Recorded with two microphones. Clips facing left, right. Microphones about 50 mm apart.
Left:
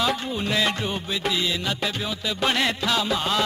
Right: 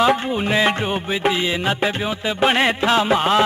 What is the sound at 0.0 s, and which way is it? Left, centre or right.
Music, right.